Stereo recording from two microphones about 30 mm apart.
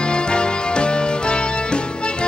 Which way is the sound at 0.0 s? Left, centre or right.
Left.